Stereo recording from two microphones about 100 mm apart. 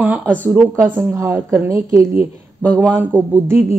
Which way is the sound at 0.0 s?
15° right (ahead or behind).